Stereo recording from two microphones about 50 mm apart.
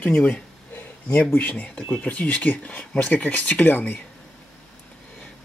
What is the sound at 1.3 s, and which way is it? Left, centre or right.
Speech, left.